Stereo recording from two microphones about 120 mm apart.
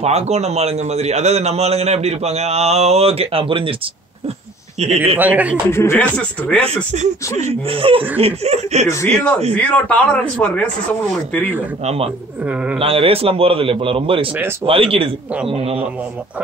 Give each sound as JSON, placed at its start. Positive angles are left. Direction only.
{"t": 0.0, "sound": "a man's voice", "side_deg": -65}
{"t": 4.7, "sound": "a man's voice", "side_deg": -65}
{"t": 5.2, "sound": "a man's voice", "side_deg": -10}
{"t": 5.7, "sound": "speech", "side_deg": 20}
{"t": 5.9, "sound": "a man's voice", "side_deg": 10}
{"t": 6.9, "sound": "a man's voice", "side_deg": -70}
{"t": 8.2, "sound": "a man's voice", "side_deg": -65}
{"t": 9.6, "sound": "a man's voice", "side_deg": 10}
{"t": 11.8, "sound": "a man's voice", "side_deg": -55}